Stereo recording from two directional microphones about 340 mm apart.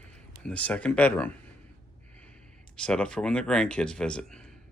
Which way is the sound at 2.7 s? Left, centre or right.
Centre.